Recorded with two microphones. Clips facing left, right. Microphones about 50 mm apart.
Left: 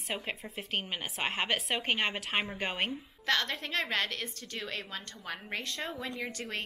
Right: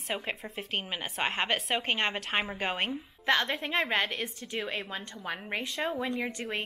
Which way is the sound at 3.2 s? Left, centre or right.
Centre.